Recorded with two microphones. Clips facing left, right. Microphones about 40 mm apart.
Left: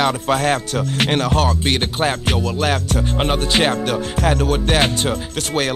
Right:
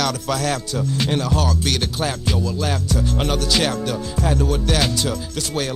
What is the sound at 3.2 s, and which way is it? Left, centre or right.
Music, left.